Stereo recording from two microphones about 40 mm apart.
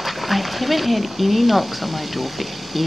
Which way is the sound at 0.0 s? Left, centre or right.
Centre.